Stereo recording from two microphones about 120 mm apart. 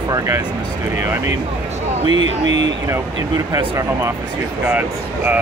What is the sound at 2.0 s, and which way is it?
Speech, 60° left (ahead or behind).